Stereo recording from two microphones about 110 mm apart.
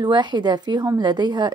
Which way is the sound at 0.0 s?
40° right (ahead or behind).